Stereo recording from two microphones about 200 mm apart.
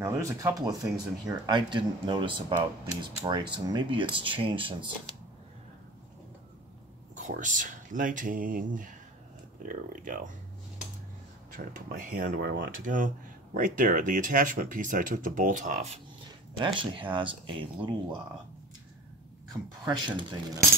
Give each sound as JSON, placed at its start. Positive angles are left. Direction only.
{"t": 0.0, "sound": "speech", "side_deg": -15}
{"t": 7.2, "sound": "speech", "side_deg": -40}
{"t": 11.5, "sound": "speech", "side_deg": -40}
{"t": 16.5, "sound": "speech", "side_deg": -25}
{"t": 19.8, "sound": "speech", "side_deg": -20}